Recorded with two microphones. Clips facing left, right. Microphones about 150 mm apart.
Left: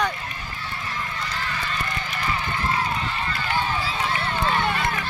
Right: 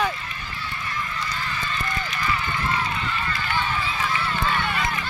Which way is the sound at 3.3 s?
35° left (ahead or behind).